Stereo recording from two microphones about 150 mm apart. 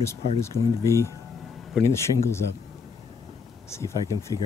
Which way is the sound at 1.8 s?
Centre (ahead or behind).